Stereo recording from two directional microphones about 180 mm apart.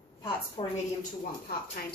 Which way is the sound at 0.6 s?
20° left (ahead or behind).